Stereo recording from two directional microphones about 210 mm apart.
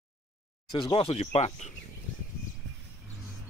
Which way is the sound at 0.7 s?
20° left (ahead or behind).